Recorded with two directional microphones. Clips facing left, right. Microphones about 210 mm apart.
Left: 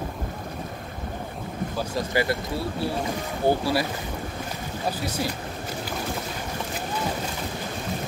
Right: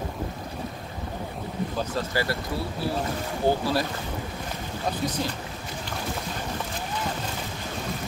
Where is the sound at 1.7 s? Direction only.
15° left (ahead or behind).